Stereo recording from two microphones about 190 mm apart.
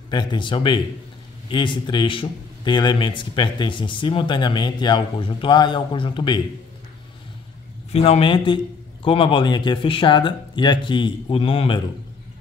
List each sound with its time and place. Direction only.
0.1 s speech: 25° left (ahead or behind)
7.9 s speech: 30° left (ahead or behind)